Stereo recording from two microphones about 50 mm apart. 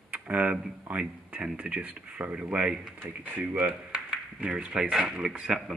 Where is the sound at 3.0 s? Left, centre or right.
Right.